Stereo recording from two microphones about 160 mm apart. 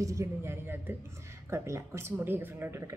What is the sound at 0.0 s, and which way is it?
Speech, 20° right (ahead or behind).